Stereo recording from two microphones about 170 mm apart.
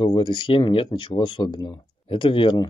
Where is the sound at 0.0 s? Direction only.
30° left (ahead or behind).